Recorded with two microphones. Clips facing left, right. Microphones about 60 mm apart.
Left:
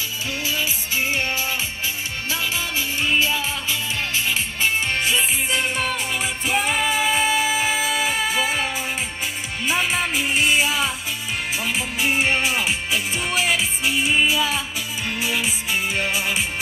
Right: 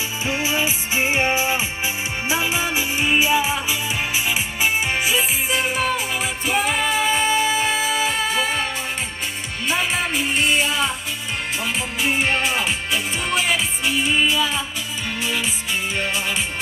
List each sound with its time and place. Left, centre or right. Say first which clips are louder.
0.3 s music: right 4 dB; right
5.0 s music: right 1 dB; centre
9.7 s music: even; centre